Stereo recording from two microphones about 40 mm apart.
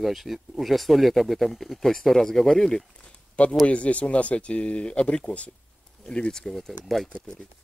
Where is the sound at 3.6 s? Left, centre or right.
Left.